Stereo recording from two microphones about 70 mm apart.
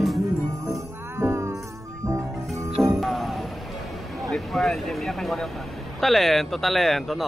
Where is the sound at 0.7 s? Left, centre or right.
Right.